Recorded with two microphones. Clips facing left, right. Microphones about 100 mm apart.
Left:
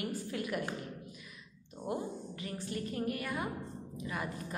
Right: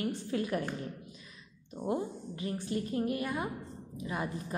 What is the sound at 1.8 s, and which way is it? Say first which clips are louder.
A woman's voice: right 4 dB; 25° right (ahead or behind).